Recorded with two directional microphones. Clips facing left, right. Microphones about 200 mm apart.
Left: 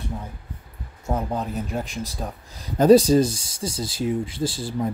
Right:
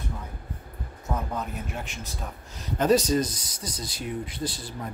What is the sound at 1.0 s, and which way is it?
Speech, 30° left (ahead or behind).